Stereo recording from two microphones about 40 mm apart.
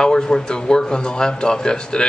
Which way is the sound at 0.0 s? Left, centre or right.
Centre.